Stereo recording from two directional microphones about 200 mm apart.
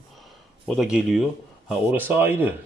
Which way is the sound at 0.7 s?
Centre (ahead or behind).